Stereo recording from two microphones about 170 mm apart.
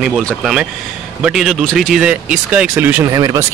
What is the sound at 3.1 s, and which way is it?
Speech, 20° right (ahead or behind).